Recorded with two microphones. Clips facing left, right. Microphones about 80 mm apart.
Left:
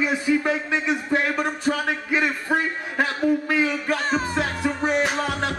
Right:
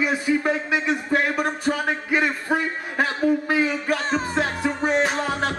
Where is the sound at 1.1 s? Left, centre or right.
Centre.